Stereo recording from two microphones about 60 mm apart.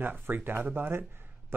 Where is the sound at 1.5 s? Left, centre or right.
Right.